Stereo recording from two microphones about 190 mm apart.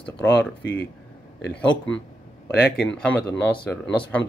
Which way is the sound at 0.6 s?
65° left (ahead or behind).